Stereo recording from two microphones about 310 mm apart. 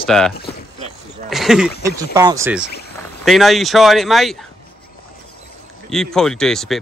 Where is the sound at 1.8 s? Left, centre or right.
Centre.